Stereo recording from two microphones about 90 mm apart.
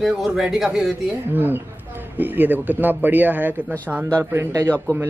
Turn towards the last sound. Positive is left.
turn(degrees=-25)  # may be behind; listen again after turning